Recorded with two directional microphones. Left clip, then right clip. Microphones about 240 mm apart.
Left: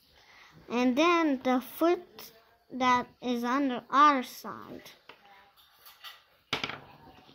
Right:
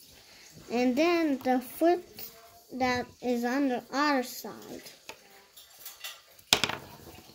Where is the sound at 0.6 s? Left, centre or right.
Left.